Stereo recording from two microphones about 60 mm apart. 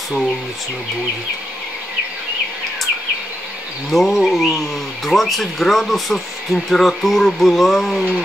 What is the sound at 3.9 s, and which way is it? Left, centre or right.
Speech, centre.